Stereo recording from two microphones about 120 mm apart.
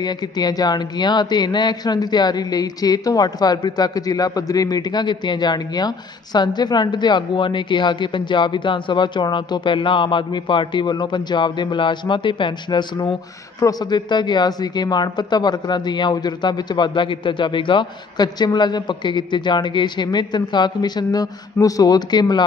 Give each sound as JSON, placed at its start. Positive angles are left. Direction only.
{"t": 0.0, "sound": "speech", "side_deg": 35}